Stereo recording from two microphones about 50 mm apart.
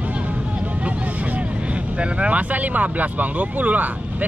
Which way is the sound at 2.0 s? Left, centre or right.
Right.